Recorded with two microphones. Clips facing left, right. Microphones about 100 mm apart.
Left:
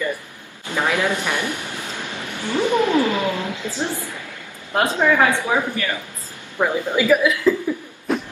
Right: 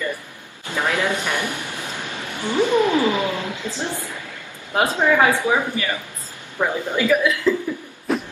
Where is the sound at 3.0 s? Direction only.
20° right (ahead or behind).